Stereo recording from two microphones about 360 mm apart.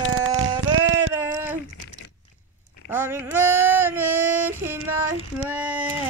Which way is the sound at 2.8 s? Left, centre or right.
Centre.